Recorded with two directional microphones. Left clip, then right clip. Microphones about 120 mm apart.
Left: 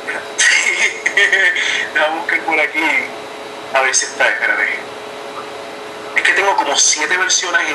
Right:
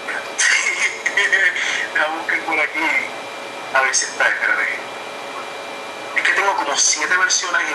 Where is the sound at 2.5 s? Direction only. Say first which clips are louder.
Left 3 dB; 30° left (ahead or behind).